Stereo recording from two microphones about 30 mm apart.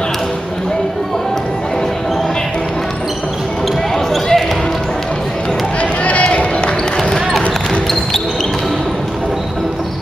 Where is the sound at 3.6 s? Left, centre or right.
Centre.